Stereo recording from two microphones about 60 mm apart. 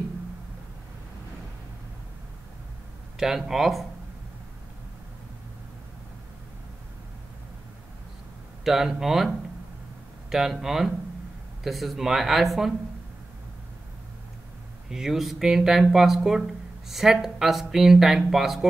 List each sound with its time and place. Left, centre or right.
3.2 s speech: centre
8.6 s speech: centre
10.3 s speech: centre
14.9 s speech: centre